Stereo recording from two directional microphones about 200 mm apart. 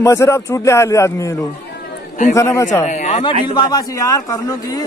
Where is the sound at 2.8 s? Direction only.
35° left (ahead or behind).